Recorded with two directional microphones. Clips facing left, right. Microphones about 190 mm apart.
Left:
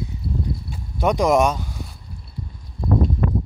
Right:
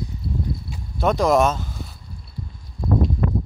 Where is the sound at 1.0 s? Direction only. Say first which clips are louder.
Even; 15° left (ahead or behind).